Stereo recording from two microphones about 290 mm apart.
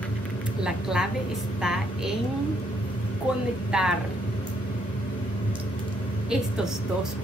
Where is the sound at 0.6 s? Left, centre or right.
Centre.